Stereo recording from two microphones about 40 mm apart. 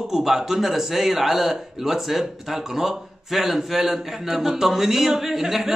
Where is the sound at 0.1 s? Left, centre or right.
Centre.